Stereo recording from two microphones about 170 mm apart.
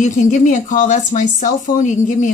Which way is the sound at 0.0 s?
45° left (ahead or behind).